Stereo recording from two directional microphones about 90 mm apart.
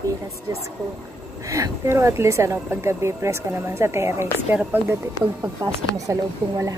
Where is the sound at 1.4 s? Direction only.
35° right (ahead or behind).